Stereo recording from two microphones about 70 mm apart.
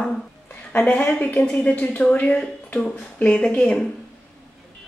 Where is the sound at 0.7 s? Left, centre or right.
Left.